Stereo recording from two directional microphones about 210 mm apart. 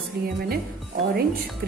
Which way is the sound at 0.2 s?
50° right (ahead or behind).